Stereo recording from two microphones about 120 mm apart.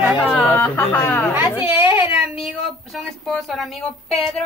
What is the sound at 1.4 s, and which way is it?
Speech, 20° right (ahead or behind).